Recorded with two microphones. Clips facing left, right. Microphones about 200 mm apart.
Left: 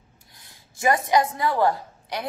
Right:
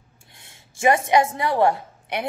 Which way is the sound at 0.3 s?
25° right (ahead or behind).